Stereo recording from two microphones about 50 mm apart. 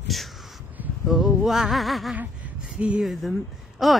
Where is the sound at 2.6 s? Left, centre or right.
Right.